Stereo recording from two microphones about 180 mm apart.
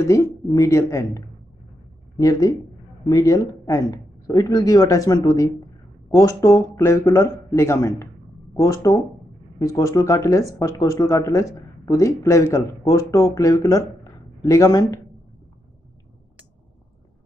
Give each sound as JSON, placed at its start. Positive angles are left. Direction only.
{"t": 0.0, "sound": "speech", "side_deg": 15}